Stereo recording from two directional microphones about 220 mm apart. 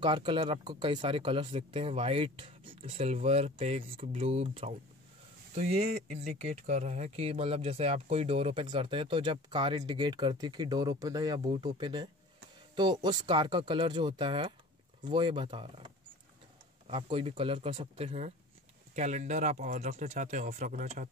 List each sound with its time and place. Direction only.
0.0 s speech: 20° right (ahead or behind)